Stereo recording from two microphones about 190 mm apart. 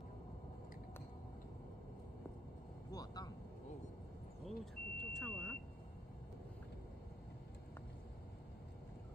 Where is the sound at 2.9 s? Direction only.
20° left (ahead or behind).